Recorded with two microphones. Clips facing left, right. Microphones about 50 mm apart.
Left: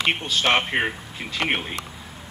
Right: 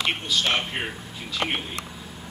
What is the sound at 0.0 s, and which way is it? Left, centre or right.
Speech, left.